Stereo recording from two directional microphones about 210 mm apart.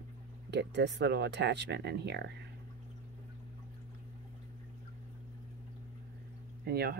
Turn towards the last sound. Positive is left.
turn(degrees=-50)  # may be behind; listen again after turning